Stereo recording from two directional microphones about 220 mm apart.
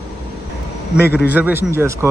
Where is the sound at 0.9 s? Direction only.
45° left (ahead or behind).